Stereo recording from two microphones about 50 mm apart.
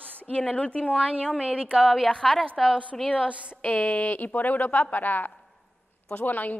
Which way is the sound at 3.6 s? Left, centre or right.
Left.